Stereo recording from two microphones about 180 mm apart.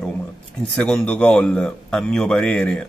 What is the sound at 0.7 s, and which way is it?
A man's voice, 5° left (ahead or behind).